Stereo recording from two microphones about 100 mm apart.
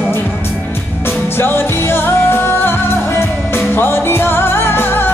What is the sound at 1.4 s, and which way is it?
Music, 25° left (ahead or behind).